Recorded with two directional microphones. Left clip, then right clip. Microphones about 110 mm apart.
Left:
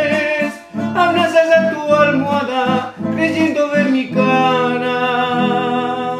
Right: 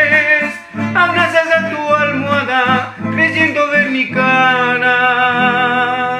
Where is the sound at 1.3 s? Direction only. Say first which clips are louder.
Left 1 dB; 50° left (ahead or behind).